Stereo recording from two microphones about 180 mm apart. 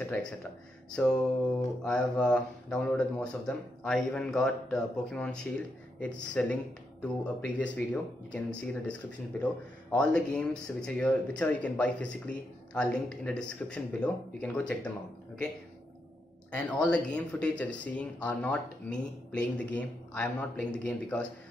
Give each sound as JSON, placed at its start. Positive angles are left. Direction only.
{"t": 0.9, "sound": "speech", "side_deg": 5}
{"t": 16.5, "sound": "speech", "side_deg": 5}